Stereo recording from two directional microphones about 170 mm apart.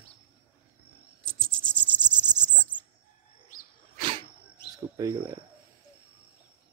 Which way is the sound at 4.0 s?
30° right (ahead or behind).